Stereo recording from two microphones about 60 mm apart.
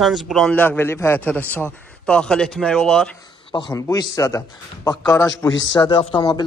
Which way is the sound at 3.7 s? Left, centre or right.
Left.